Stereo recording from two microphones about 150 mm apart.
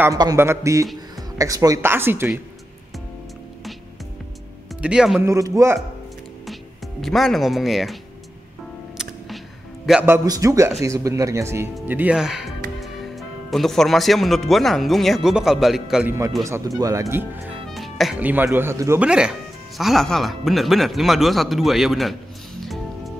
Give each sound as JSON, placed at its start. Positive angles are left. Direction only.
{"t": 0.0, "sound": "speech", "side_deg": -25}
{"t": 4.8, "sound": "speech", "side_deg": -5}
{"t": 5.2, "sound": "speech", "side_deg": -20}
{"t": 7.0, "sound": "speech", "side_deg": 0}
{"t": 10.0, "sound": "speech", "side_deg": -20}
{"t": 16.1, "sound": "speech", "side_deg": -20}
{"t": 17.6, "sound": "music", "side_deg": 0}
{"t": 18.2, "sound": "speech", "side_deg": -15}
{"t": 19.0, "sound": "speech", "side_deg": -5}
{"t": 22.6, "sound": "music", "side_deg": 0}